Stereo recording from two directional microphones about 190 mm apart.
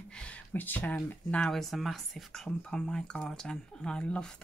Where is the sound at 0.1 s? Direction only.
5° left (ahead or behind).